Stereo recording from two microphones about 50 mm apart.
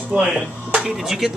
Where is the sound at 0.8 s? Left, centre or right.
Centre.